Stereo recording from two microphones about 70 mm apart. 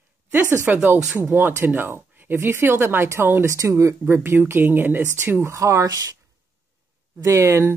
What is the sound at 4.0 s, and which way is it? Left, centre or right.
A woman's voice, right.